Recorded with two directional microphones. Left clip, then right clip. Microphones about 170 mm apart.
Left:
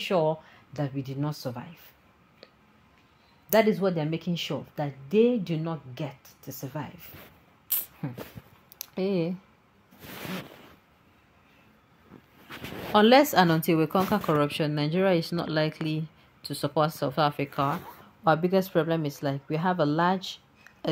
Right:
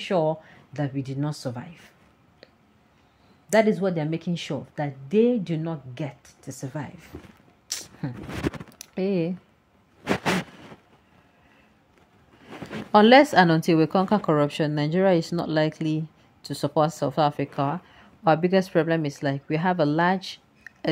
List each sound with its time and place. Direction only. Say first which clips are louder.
0.0 s a woman's voice: right 2 dB; 10° right (ahead or behind)
3.4 s a woman's voice: right 2 dB; 20° right (ahead or behind)
8.6 s typing: right 2 dB; 20° right (ahead or behind)
12.9 s a woman's voice: right 4 dB; 20° right (ahead or behind)
20.7 s a sound: right 10 dB; 20° right (ahead or behind)